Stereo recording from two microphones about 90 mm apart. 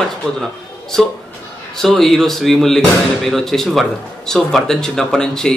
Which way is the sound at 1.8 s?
5° left (ahead or behind).